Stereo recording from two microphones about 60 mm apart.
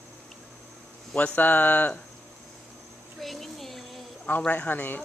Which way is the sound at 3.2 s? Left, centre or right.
Centre.